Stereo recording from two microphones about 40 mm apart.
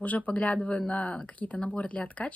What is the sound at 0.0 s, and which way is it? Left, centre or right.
Speech, left.